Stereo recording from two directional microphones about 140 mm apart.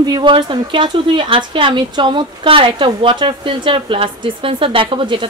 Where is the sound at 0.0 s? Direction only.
30° right (ahead or behind).